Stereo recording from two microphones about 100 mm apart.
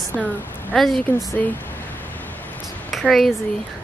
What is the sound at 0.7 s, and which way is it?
Speech, centre (ahead or behind).